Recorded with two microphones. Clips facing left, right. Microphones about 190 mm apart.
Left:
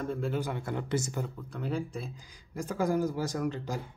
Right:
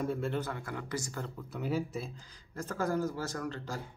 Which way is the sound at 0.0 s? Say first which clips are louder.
Left 1 dB; centre (ahead or behind).